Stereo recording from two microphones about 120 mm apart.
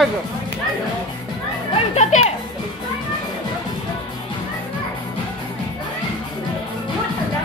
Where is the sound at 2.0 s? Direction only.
70° left (ahead or behind).